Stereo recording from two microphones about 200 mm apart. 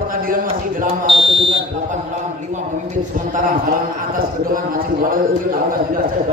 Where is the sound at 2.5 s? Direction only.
40° right (ahead or behind).